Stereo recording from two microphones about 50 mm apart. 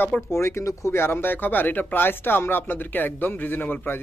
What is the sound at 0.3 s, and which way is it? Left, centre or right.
Speech, left.